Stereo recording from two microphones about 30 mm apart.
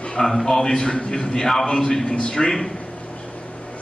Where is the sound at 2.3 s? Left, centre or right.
Centre.